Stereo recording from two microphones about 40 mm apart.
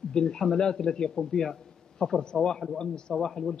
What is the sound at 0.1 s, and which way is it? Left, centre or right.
A man's voice, centre.